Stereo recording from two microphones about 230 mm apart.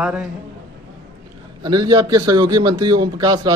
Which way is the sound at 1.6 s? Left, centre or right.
Centre.